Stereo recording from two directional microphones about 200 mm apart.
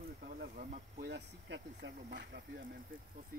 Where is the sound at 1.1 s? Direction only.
60° right (ahead or behind).